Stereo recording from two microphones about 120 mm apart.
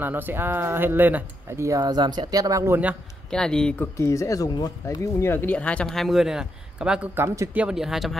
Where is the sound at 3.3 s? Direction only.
5° left (ahead or behind).